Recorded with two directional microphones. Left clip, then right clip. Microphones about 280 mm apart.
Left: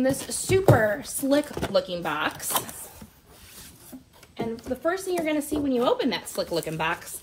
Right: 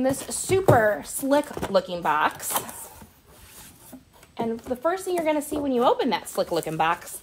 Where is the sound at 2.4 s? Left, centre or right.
Centre.